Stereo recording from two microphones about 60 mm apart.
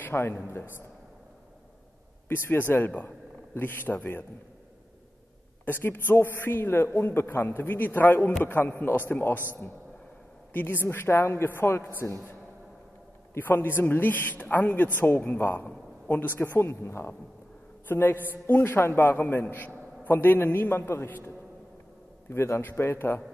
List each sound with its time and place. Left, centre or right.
0.0 s a man's voice: left
2.2 s a man's voice: left
5.7 s a man's voice: left
10.5 s a man's voice: left
13.4 s a man's voice: left
17.8 s a man's voice: left
22.3 s a man's voice: left